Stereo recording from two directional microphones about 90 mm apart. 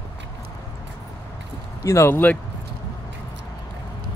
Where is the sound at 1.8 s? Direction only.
35° left (ahead or behind).